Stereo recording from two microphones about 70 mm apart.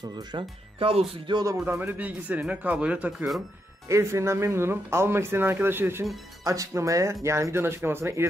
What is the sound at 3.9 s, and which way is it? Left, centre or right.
Speech, right.